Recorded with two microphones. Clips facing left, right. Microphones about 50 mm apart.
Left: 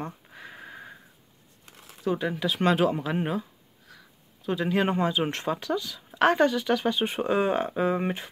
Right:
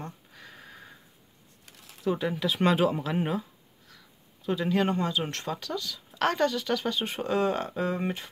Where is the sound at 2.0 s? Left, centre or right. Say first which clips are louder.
Left 1 dB; centre.